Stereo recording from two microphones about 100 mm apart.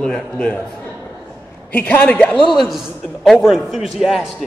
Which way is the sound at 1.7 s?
20° left (ahead or behind).